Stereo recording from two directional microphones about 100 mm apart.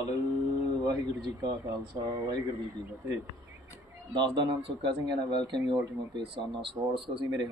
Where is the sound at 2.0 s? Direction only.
45° right (ahead or behind).